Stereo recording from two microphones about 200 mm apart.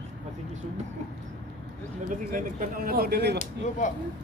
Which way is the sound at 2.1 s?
40° right (ahead or behind).